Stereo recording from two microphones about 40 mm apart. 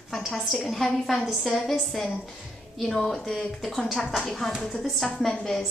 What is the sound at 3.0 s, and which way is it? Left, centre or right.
A woman's voice, centre.